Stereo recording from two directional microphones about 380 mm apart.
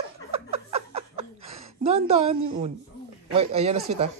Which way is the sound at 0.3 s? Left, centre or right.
Centre.